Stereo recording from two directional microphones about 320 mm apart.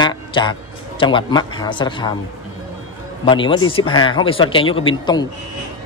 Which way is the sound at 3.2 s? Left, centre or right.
Centre.